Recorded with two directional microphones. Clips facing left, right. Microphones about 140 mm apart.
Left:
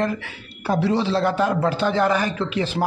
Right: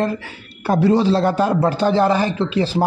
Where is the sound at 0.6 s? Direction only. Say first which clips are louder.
Right 5 dB; 50° right (ahead or behind).